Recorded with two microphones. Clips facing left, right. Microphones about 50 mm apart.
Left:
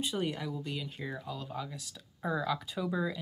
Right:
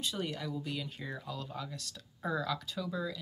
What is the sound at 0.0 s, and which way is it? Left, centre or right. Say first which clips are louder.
Speech: left 3 dB; centre.